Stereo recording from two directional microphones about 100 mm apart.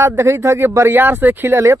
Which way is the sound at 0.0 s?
25° right (ahead or behind).